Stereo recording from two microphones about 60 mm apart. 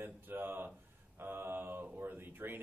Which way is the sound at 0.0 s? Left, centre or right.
Right.